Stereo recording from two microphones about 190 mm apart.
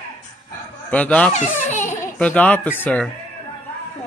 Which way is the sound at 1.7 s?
40° left (ahead or behind).